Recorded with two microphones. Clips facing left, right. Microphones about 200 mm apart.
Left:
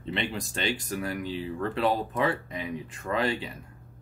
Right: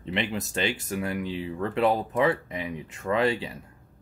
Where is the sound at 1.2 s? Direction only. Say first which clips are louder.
Right 1 dB; 35° left (ahead or behind).